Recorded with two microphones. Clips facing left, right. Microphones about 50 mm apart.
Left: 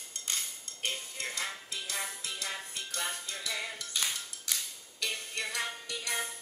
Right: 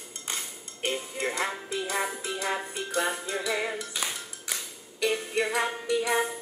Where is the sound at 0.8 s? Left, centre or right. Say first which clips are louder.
Right 7 dB; centre.